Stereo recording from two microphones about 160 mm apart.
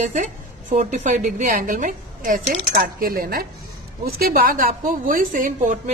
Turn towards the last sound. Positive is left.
turn(degrees=-55)  # may be behind; listen again after turning